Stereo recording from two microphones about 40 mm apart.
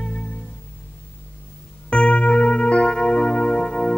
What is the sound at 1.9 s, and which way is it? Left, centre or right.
Music, left.